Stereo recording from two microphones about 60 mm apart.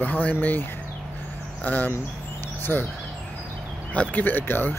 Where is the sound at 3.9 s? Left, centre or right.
Left.